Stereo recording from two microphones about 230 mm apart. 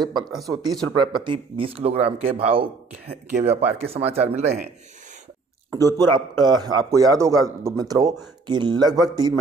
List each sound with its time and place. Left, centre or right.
0.5 s a man's voice: centre
5.7 s a man's voice: centre